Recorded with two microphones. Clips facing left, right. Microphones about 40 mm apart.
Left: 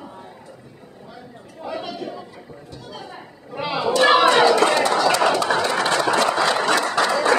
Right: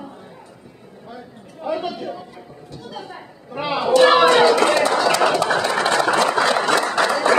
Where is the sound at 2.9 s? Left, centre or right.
Centre.